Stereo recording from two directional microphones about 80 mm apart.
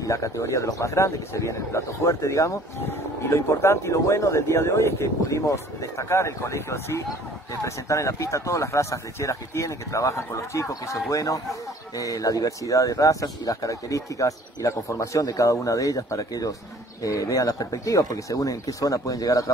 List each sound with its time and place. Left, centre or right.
0.0 s a man's voice: left